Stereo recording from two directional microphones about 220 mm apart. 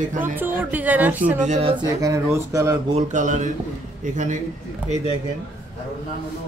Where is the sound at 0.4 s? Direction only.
10° right (ahead or behind).